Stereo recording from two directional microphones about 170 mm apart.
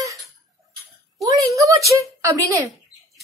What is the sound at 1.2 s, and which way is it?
Speech, 20° right (ahead or behind).